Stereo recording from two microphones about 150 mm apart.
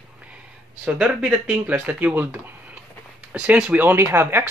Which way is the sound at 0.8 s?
5° right (ahead or behind).